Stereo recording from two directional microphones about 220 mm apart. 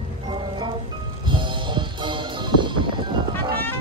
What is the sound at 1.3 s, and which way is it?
Music, 20° right (ahead or behind).